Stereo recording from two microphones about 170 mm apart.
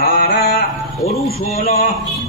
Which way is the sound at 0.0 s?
65° left (ahead or behind).